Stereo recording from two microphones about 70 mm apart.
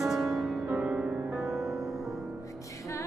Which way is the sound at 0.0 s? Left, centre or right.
Centre.